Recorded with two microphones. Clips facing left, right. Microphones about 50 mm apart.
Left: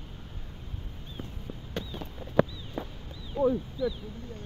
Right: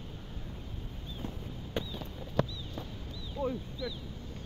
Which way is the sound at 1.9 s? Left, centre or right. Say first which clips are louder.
Left 2 dB; centre.